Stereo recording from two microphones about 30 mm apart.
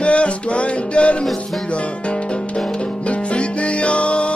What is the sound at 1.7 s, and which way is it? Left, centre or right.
Music, left.